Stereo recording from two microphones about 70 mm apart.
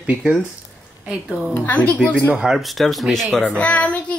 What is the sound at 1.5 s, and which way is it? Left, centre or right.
Speech, left.